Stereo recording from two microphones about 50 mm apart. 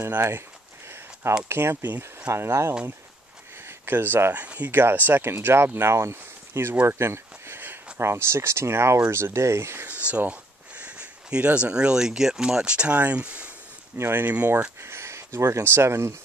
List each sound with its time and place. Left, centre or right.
1.5 s speech: right
2.2 s speech: right
3.6 s speech: right
4.9 s speech: right
5.2 s speech: right
6.9 s a sound: right
7.6 s speech: right
9.8 s speech: right
13.9 s speech: right
14.2 s speech: right
14.8 s a sound: right
15.6 s speech: right